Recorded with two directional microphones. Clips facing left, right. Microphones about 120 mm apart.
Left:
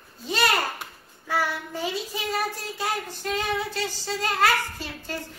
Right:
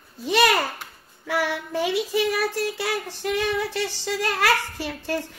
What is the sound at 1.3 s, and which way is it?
Child singing, 90° right.